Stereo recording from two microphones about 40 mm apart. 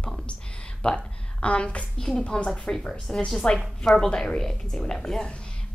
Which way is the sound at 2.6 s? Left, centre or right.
Centre.